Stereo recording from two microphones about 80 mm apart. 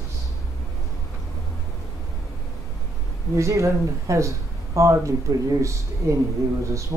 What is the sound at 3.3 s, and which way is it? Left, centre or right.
Speech, right.